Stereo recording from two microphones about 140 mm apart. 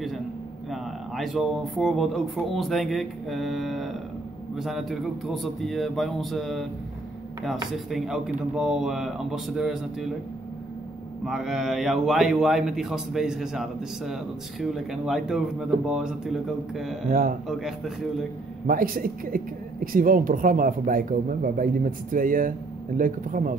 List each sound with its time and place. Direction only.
0.7 s a man's voice: centre (ahead or behind)
7.9 s a man's voice: 5° right (ahead or behind)
11.2 s a man's voice: centre (ahead or behind)
18.7 s speech: 85° right